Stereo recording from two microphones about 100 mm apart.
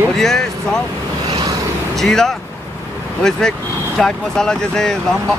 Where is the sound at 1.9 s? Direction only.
5° left (ahead or behind).